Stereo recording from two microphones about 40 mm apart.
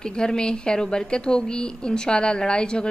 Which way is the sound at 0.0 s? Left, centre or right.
Centre.